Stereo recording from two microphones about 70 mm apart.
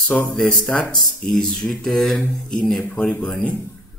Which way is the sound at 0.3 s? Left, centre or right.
Centre.